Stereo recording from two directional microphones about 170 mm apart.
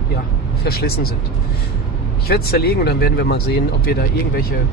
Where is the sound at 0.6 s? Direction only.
65° left (ahead or behind).